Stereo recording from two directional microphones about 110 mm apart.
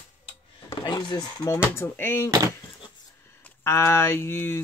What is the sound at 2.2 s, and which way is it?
Speech, 35° right (ahead or behind).